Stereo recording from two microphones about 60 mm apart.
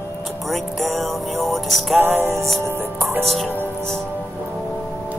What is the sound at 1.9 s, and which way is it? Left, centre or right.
Music, right.